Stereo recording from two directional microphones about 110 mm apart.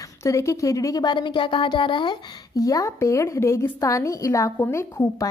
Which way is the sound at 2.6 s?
30° left (ahead or behind).